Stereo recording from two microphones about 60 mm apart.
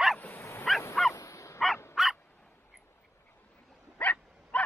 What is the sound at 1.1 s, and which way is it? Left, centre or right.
Dog, left.